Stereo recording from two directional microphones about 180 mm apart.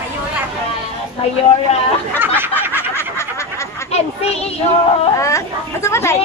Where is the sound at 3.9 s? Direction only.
35° left (ahead or behind).